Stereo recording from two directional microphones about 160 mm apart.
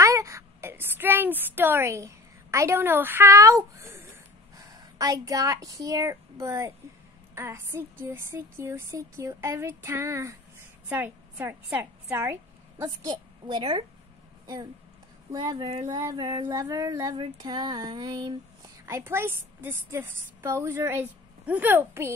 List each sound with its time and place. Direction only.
0.0 s a sound: 20° right (ahead or behind)
4.6 s a woman's voice: 20° right (ahead or behind)
15.3 s female singing: 25° right (ahead or behind)
18.9 s a woman's voice: 15° right (ahead or behind)